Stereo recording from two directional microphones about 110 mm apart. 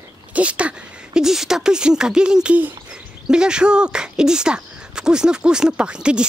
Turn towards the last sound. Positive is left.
turn(degrees=-10)  # may be behind; listen again after turning